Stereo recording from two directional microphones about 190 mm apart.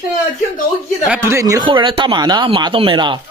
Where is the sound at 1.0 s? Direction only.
10° right (ahead or behind); by 3.2 s 25° right (ahead or behind).